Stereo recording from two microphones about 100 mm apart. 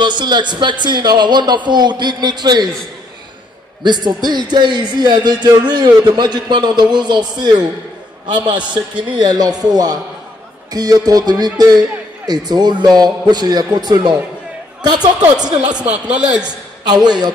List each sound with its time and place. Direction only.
0.0 s speech: 50° right (ahead or behind)
3.8 s speech: 45° right (ahead or behind)
15.8 s a man's voice: 10° right (ahead or behind)
16.8 s speech: 45° right (ahead or behind)